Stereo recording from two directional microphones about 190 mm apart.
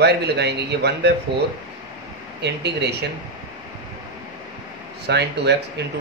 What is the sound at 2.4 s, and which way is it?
Speech, 60° right (ahead or behind).